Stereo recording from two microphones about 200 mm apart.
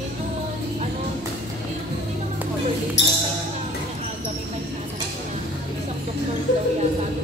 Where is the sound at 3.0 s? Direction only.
60° left (ahead or behind).